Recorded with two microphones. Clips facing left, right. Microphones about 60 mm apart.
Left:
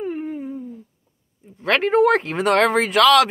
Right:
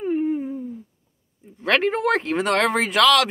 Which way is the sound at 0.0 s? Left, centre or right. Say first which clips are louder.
Right 4 dB; centre.